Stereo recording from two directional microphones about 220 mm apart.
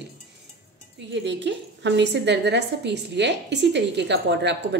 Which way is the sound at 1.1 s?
55° right (ahead or behind).